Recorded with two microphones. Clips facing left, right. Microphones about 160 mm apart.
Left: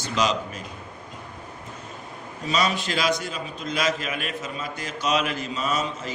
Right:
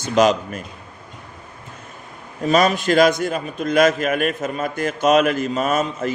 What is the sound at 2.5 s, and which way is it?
A man's voice, 50° right (ahead or behind).